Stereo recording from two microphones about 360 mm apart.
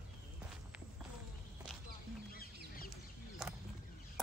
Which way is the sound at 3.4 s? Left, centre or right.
Centre.